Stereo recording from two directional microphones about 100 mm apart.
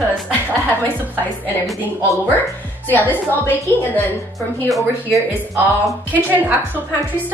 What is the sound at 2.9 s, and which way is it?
A woman's voice, 20° left (ahead or behind).